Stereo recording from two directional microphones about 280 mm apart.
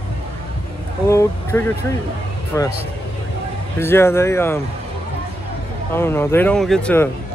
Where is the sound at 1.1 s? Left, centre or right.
Centre.